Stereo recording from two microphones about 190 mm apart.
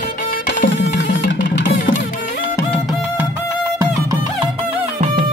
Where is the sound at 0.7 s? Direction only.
70° left (ahead or behind).